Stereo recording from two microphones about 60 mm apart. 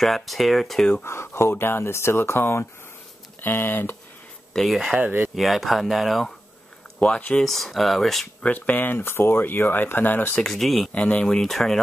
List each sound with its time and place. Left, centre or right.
0.0 s speech: centre
1.0 s speech: left
4.7 s speech: centre
5.0 s speech: right
5.3 s speech: centre
7.0 s speech: left
7.3 s speech: centre
8.4 s speech: left
10.4 s speech: centre
10.9 s speech: left; by 11.8 s centre